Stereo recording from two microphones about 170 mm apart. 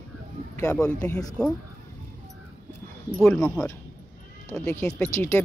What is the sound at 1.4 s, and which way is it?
Speech, 5° left (ahead or behind).